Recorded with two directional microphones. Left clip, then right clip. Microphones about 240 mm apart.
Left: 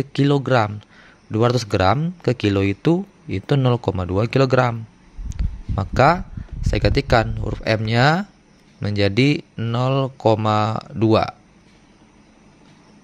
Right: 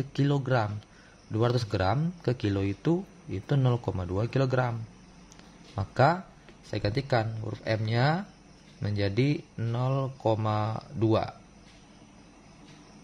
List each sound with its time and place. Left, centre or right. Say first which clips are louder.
0.0 s speech: left 10 dB; left
5.3 s a sound: left 10 dB; left
6.7 s speech: left 11 dB; left